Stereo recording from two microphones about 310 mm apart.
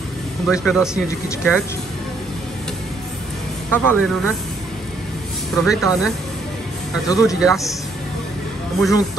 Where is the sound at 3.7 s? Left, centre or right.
Centre.